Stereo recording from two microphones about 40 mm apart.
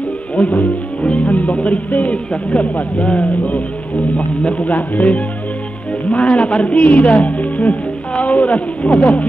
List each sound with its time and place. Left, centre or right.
0.4 s speech: left
4.4 s a man's voice: left
4.7 s speech: left